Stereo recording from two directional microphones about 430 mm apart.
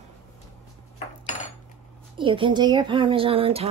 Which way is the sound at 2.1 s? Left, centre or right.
Centre.